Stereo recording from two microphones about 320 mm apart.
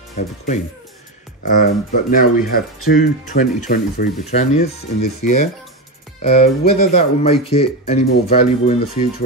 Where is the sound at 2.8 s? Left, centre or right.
Left.